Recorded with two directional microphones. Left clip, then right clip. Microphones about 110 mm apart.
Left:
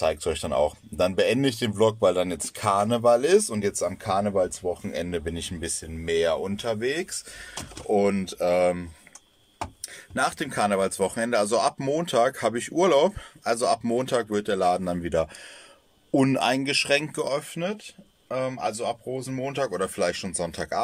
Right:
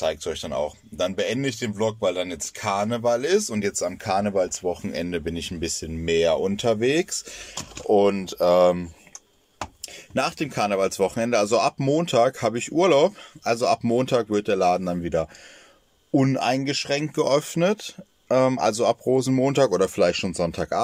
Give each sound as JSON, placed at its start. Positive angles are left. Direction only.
{"t": 0.0, "sound": "speech", "side_deg": 10}
{"t": 7.9, "sound": "speech", "side_deg": 0}
{"t": 10.1, "sound": "speech", "side_deg": -10}
{"t": 17.2, "sound": "speech", "side_deg": -40}
{"t": 20.3, "sound": "speech", "side_deg": -25}